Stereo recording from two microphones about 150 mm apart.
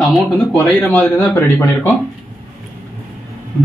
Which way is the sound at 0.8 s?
10° left (ahead or behind).